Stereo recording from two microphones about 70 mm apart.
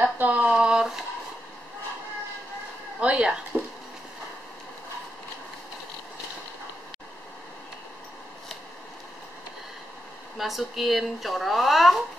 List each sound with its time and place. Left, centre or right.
0.0 s speech: right
0.5 s speech: centre
3.0 s speech: centre
10.3 s speech: centre